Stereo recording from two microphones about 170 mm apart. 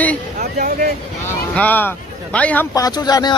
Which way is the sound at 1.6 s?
10° left (ahead or behind).